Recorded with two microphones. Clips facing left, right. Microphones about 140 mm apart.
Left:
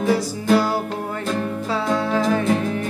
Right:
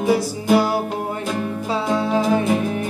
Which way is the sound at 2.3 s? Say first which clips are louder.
Right 1 dB; 15° right (ahead or behind).